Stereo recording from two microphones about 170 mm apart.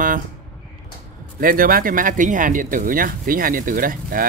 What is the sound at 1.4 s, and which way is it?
Speech, 55° right (ahead or behind).